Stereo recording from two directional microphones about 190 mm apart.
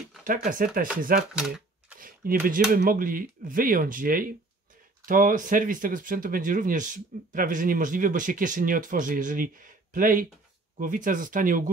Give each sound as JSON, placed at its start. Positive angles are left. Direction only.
{"t": 0.2, "sound": "speech", "side_deg": -45}
{"t": 1.3, "sound": "camera", "side_deg": -5}
{"t": 2.0, "sound": "a sound", "side_deg": -45}
{"t": 2.4, "sound": "speech", "side_deg": -50}